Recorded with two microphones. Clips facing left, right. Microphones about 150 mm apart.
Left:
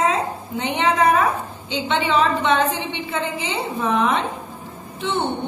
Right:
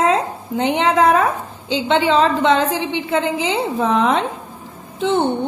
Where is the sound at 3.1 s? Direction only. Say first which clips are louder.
Right 7 dB; 90° right.